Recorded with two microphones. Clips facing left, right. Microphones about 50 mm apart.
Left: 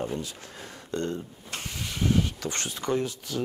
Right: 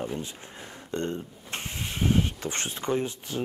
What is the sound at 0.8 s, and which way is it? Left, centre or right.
Speech, right.